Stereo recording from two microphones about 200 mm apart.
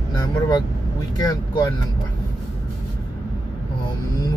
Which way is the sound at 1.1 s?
20° left (ahead or behind).